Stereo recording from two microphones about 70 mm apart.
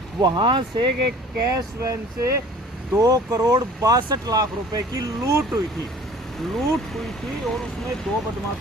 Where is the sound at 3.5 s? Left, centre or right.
Right.